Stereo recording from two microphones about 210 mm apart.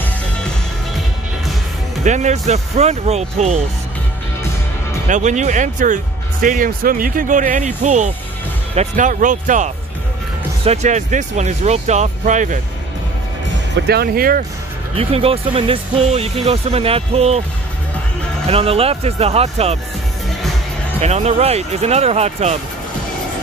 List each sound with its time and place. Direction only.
2.0 s speech: 35° right (ahead or behind)
5.0 s speech: 35° right (ahead or behind)
13.8 s speech: 45° right (ahead or behind)
15.0 s speech: 25° right (ahead or behind)
18.5 s speech: 25° right (ahead or behind)
21.0 s speech: 30° right (ahead or behind)